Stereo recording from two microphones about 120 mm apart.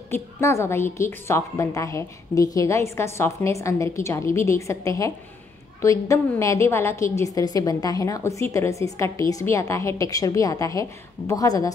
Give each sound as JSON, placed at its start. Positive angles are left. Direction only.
{"t": 0.1, "sound": "a woman's voice", "side_deg": 25}